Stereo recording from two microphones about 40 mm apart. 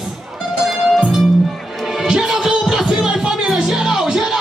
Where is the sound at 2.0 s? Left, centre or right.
Centre.